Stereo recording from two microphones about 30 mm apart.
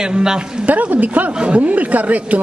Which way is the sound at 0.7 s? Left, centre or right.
Right.